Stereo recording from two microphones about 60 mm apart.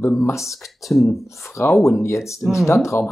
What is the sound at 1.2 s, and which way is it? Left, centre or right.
Speech, left.